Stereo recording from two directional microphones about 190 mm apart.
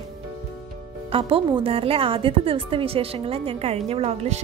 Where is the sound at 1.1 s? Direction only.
30° right (ahead or behind).